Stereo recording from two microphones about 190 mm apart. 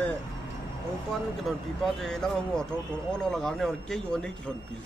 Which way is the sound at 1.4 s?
Centre (ahead or behind).